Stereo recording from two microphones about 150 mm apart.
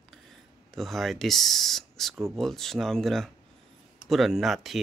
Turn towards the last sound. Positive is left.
turn(degrees=0)  # may be behind; listen again after turning